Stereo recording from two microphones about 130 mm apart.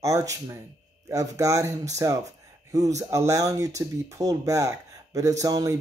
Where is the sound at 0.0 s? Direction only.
25° right (ahead or behind).